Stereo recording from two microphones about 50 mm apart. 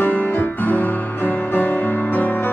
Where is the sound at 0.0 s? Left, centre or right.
Left.